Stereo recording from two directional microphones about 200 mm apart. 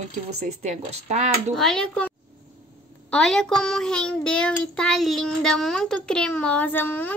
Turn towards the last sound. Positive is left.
turn(degrees=10)  # may be behind; listen again after turning